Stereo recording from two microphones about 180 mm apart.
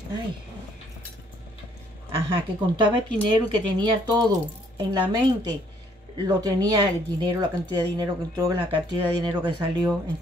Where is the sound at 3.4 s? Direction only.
25° right (ahead or behind).